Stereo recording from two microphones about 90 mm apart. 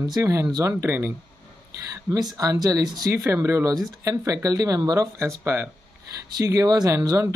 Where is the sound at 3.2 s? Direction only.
30° right (ahead or behind).